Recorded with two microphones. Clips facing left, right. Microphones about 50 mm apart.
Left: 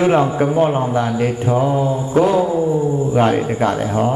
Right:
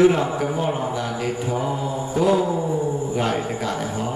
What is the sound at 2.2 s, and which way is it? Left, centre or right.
Music, left.